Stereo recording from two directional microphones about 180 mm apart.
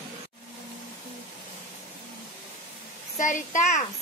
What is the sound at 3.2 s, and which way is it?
Speech, 45° left (ahead or behind).